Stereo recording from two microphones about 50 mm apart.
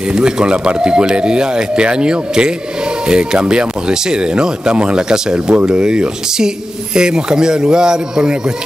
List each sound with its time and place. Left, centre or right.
0.1 s speech: centre